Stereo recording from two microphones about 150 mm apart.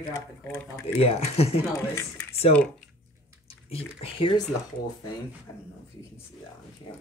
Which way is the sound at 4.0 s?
35° left (ahead or behind).